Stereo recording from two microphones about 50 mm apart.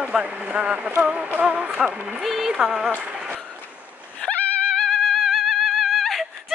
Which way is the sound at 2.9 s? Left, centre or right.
Right.